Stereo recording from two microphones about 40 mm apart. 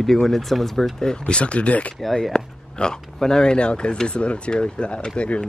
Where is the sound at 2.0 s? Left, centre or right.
Centre.